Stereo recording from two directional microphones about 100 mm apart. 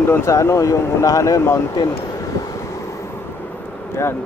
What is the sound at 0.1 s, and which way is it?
Speech, 30° left (ahead or behind).